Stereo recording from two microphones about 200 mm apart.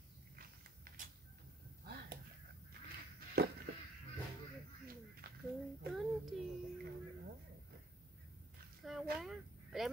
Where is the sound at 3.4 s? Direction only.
50° right (ahead or behind).